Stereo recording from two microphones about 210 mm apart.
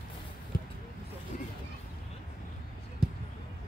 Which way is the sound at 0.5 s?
45° left (ahead or behind).